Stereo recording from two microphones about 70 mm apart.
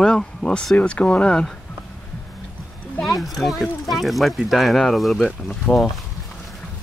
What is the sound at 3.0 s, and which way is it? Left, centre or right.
Speech, centre.